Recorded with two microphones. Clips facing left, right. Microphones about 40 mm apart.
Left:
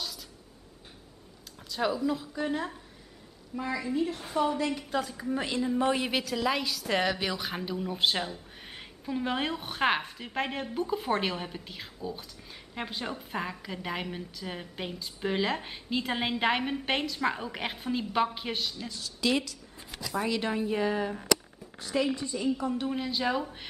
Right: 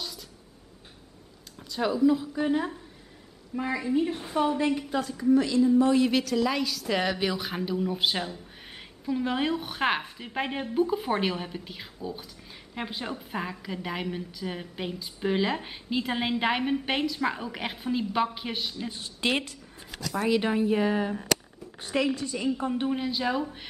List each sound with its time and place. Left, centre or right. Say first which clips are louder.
1.6 s a woman's voice: right 5 dB; centre
3.5 s a woman's voice: right 3 dB; right
4.8 s a woman's voice: right 2 dB; centre
5.1 s a woman's voice: right 9 dB; centre
6.0 s a woman's voice: right 4 dB; centre
18.9 s a woman's voice: even; right
20.2 s speech: right 5 dB; centre
21.9 s a woman's voice: right 2 dB; right
22.8 s a woman's voice: right 1 dB; centre